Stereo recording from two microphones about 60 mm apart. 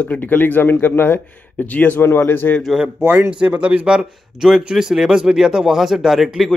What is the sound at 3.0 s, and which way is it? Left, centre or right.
Speech, right.